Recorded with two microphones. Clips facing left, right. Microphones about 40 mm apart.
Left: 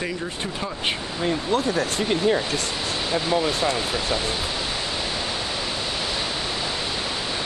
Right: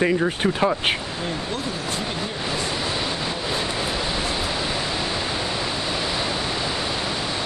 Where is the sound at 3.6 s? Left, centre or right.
Centre.